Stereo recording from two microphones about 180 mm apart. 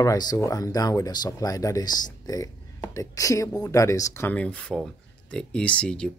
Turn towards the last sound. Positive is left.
turn(degrees=5)  # may be behind; listen again after turning